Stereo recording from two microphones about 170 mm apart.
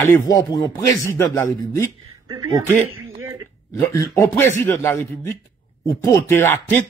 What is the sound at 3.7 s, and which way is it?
Speech, 20° left (ahead or behind).